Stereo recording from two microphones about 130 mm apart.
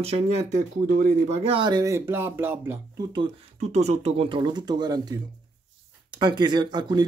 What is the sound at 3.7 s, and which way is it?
Speech, 60° right (ahead or behind).